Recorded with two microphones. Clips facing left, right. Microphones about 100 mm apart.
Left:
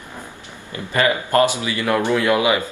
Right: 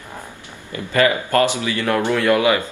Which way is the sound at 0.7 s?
20° left (ahead or behind).